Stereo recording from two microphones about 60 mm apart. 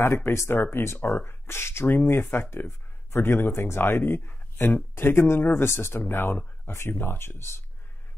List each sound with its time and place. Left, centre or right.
0.0 s speech: left